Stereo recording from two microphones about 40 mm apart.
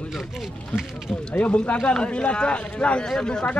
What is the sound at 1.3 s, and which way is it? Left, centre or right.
Speech, left.